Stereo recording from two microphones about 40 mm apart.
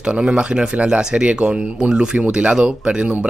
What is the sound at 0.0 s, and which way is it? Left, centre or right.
Speech, right.